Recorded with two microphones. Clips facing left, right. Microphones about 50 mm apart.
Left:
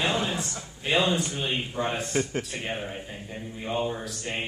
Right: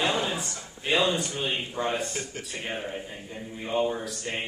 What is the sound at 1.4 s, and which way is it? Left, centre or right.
Speech, centre.